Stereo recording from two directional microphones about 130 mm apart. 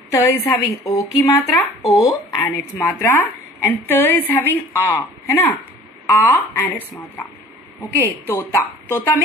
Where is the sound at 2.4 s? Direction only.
15° left (ahead or behind).